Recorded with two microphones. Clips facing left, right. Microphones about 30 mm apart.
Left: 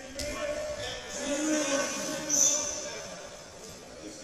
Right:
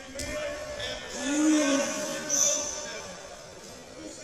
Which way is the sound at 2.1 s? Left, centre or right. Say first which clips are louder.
Right 1 dB; centre.